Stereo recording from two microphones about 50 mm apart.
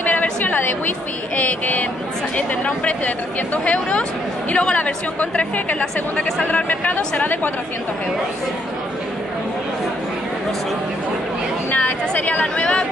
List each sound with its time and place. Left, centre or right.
0.0 s a woman's voice: left
12.3 s a woman's voice: left